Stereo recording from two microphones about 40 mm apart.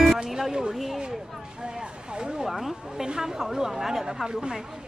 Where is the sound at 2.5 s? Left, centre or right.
Centre.